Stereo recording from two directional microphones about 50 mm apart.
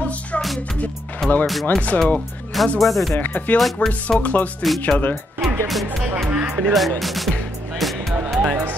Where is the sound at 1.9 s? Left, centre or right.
Left.